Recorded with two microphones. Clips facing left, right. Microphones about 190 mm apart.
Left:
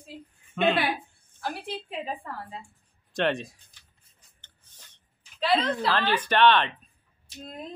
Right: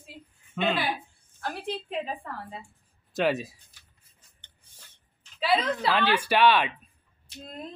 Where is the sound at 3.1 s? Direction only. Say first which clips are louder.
Right 1 dB; 5° right (ahead or behind).